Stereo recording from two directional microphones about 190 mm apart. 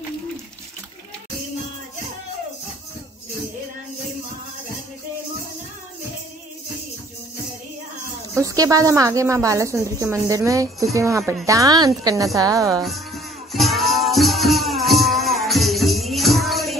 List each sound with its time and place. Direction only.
8.4 s a woman's voice: 15° right (ahead or behind)
12.8 s music: centre (ahead or behind)